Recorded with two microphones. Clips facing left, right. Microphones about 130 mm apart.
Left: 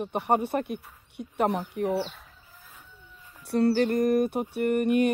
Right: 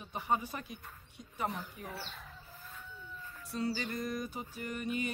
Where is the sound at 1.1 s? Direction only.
65° left (ahead or behind).